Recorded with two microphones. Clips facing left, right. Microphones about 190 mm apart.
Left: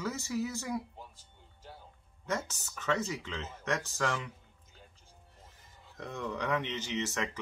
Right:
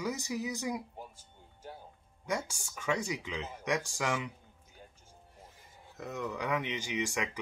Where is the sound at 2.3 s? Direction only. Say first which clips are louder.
Even; 10° right (ahead or behind).